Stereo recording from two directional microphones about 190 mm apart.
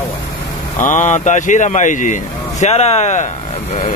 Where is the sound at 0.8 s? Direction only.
40° left (ahead or behind).